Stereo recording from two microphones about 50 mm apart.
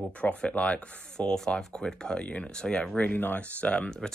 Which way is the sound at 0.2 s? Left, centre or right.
Left.